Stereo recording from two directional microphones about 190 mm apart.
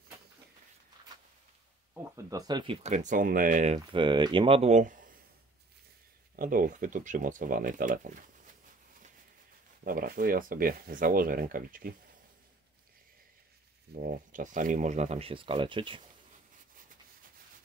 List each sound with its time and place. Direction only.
2.1 s speech: 15° right (ahead or behind); by 3.8 s 40° right (ahead or behind)
3.9 s speech: 25° right (ahead or behind); by 5.2 s 45° right (ahead or behind)
6.3 s speech: 45° right (ahead or behind)
9.8 s speech: 50° right (ahead or behind)
13.9 s speech: 45° right (ahead or behind); by 16.0 s 25° right (ahead or behind)